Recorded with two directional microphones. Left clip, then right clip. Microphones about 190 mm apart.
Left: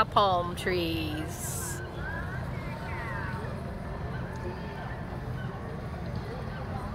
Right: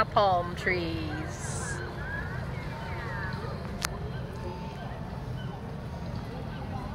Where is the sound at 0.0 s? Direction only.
10° left (ahead or behind).